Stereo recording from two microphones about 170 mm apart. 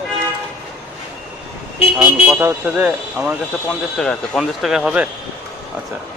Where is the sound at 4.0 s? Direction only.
Centre (ahead or behind).